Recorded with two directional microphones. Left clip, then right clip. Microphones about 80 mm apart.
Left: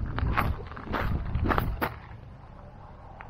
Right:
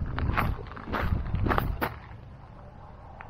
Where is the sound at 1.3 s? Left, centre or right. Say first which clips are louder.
Even; left.